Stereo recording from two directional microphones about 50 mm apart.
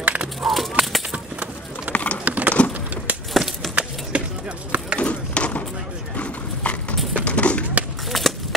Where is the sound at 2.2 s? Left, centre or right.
Right.